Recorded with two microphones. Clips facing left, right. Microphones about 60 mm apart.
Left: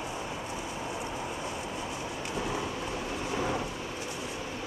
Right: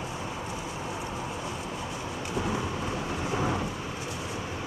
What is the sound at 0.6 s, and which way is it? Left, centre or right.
Vehicle, centre.